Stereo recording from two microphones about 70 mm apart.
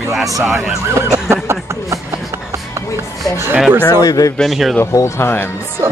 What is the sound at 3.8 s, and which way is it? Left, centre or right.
Speech, left.